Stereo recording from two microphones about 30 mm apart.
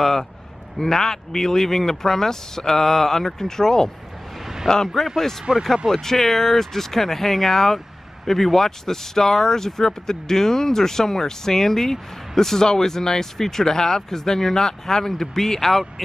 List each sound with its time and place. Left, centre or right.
0.0 s speech: centre
5.5 s speech: right
5.9 s speech: centre